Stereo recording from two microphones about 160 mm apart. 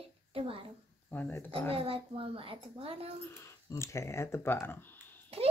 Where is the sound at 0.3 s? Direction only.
35° right (ahead or behind).